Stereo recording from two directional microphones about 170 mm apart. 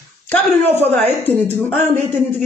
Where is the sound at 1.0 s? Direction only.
40° right (ahead or behind).